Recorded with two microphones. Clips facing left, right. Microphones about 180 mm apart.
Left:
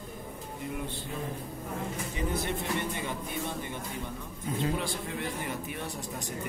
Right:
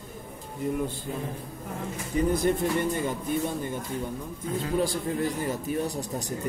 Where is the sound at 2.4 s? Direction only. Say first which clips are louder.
Right 7 dB; 40° right (ahead or behind).